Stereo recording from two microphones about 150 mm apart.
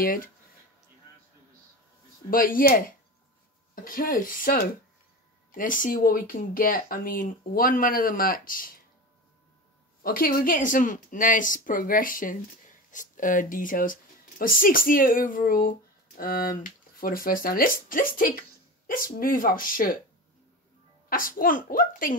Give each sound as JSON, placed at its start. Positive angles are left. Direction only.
{"t": 0.0, "sound": "speech", "side_deg": 70}
{"t": 2.3, "sound": "speech", "side_deg": 70}
{"t": 10.0, "sound": "speech", "side_deg": 70}
{"t": 21.1, "sound": "speech", "side_deg": 65}